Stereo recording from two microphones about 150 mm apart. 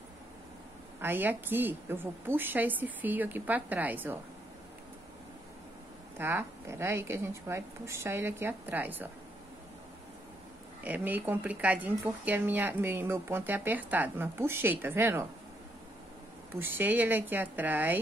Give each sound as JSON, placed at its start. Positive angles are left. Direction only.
{"t": 1.0, "sound": "speech", "side_deg": -15}
{"t": 6.1, "sound": "speech", "side_deg": -15}
{"t": 10.8, "sound": "speech", "side_deg": -10}
{"t": 16.5, "sound": "speech", "side_deg": -15}